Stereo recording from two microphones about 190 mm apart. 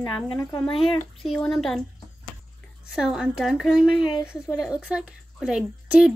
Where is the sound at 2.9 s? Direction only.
5° right (ahead or behind).